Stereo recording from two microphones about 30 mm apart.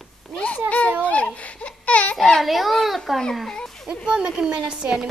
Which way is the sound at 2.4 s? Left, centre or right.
Centre.